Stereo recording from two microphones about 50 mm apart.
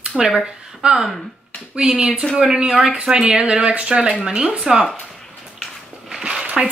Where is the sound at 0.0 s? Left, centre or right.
Centre.